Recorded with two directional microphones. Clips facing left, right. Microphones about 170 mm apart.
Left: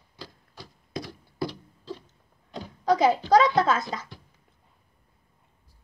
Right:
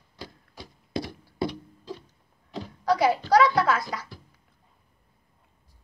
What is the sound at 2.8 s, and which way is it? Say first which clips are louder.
A child's voice: left 1 dB; 20° left (ahead or behind).